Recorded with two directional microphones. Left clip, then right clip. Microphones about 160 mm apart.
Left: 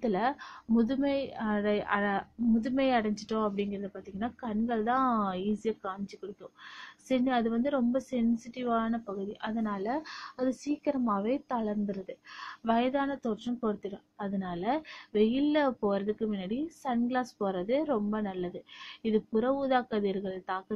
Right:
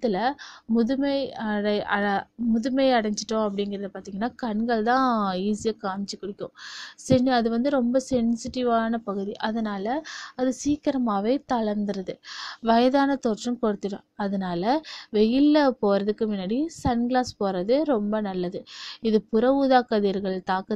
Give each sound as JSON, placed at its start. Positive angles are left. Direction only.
{"t": 0.0, "sound": "a woman's voice", "side_deg": -25}
{"t": 12.6, "sound": "a woman's voice", "side_deg": -45}